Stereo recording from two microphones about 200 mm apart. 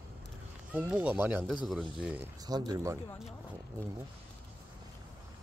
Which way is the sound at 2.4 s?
20° right (ahead or behind).